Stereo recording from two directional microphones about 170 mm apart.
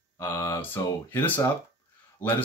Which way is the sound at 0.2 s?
15° left (ahead or behind).